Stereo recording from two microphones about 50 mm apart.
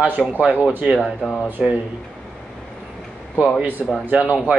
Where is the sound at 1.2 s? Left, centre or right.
Centre.